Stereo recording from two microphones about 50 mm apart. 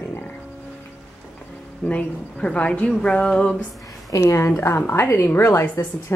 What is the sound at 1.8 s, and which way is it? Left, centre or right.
Speech, left.